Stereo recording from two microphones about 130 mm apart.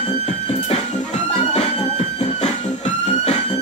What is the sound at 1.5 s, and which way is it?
Emergency vehicle, 60° left (ahead or behind).